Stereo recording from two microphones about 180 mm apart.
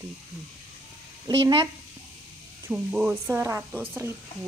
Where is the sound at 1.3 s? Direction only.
20° right (ahead or behind).